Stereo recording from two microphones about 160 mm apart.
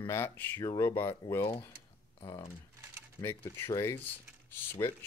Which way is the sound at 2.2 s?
25° left (ahead or behind).